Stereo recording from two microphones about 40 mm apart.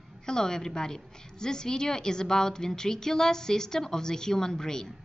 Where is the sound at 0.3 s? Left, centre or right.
Centre.